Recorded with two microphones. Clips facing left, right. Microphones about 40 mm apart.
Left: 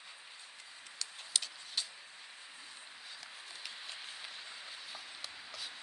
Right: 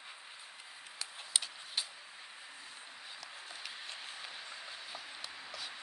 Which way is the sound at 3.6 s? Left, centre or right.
Centre.